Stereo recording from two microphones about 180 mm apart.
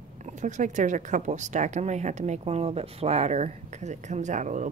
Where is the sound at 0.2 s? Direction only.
45° right (ahead or behind).